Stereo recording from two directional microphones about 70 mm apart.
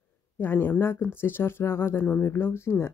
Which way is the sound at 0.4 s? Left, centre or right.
Left.